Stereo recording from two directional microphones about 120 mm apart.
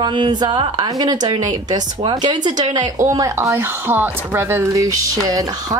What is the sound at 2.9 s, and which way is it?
Speech, 25° right (ahead or behind).